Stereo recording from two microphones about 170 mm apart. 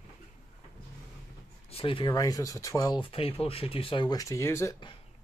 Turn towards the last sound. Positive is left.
turn(degrees=15)  # may be behind; listen again after turning